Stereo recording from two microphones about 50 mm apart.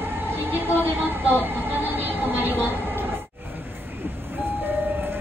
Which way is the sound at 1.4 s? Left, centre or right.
Right.